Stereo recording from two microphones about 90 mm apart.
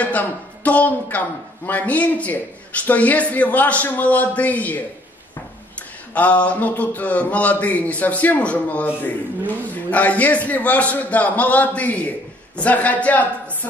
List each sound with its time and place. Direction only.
0.0 s a man's voice: 15° left (ahead or behind)
6.1 s a man's voice: 15° left (ahead or behind)